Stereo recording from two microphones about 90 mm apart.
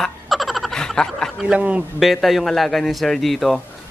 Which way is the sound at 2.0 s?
Centre (ahead or behind).